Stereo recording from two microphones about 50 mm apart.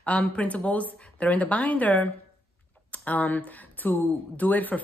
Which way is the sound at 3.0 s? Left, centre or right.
Left.